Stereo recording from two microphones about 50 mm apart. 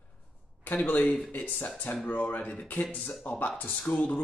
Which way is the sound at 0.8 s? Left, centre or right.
Left.